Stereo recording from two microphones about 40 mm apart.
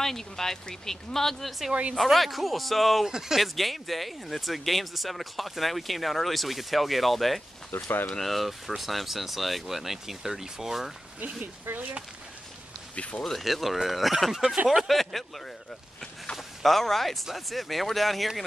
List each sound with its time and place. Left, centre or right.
0.0 s speech: centre
1.7 s a woman's voice: right
2.0 s speech: centre
3.1 s speech: centre
3.5 s speech: centre
7.7 s speech: left
8.2 s speech: centre
12.9 s speech: left
13.2 s speech: centre
14.8 s speech: centre